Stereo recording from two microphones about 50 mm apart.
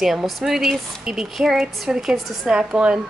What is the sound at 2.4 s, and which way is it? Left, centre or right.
Speech, centre.